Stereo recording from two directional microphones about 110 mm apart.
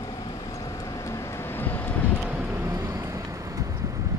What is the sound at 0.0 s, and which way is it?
Vehicle, 35° left (ahead or behind).